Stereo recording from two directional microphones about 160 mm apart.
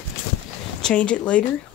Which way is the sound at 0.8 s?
5° left (ahead or behind).